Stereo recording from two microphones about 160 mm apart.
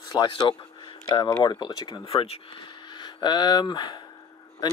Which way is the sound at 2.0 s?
40° left (ahead or behind).